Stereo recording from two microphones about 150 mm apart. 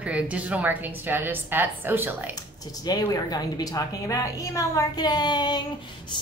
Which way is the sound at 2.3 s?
25° left (ahead or behind).